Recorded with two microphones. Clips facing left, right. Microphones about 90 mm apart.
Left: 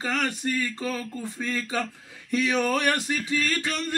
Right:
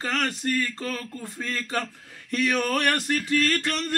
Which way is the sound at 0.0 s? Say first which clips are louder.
Even; 10° left (ahead or behind).